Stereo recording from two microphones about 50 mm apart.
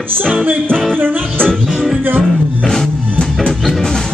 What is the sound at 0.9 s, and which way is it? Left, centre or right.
Music, right.